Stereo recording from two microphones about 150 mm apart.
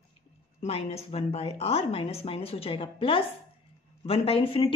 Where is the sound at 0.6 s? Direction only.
40° left (ahead or behind).